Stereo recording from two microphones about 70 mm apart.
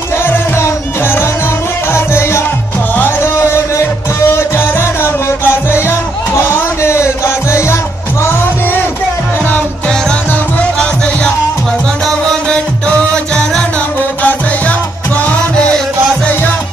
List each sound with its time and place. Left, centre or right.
0.2 s music: left
10.6 s music: centre
12.4 s music: centre
14.2 s music: left